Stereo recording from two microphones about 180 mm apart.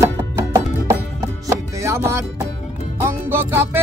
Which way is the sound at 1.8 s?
15° right (ahead or behind).